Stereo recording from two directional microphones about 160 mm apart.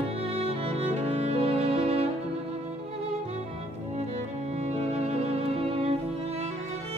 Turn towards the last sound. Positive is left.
turn(degrees=-35)  # may be behind; listen again after turning